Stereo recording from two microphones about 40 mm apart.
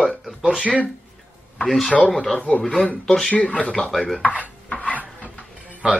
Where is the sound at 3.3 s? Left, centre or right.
Left.